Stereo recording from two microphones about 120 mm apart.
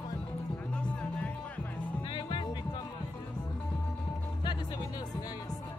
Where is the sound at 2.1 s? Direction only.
45° left (ahead or behind).